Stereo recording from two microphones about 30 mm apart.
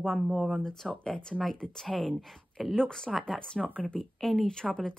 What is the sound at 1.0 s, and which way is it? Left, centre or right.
Speech, left.